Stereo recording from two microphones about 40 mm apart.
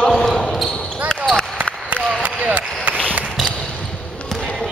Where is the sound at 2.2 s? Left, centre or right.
Right.